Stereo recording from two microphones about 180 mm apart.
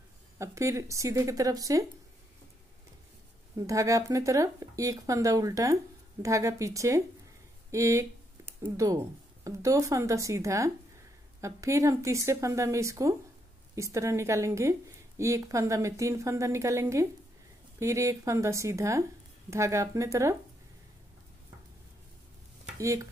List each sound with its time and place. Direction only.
0.4 s a woman's voice: 15° right (ahead or behind)
3.5 s a woman's voice: 20° right (ahead or behind)
22.8 s a woman's voice: 15° right (ahead or behind)